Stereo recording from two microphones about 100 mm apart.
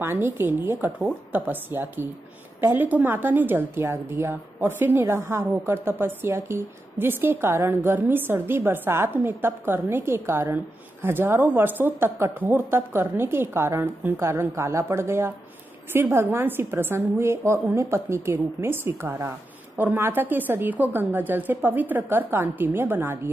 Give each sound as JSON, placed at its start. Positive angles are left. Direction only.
{"t": 0.0, "sound": "speech", "side_deg": -25}